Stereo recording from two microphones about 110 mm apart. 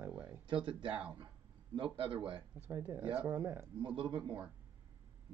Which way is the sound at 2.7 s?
20° right (ahead or behind).